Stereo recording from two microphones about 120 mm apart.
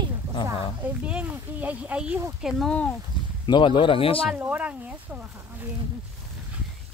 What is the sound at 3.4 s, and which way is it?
Speech, 40° left (ahead or behind).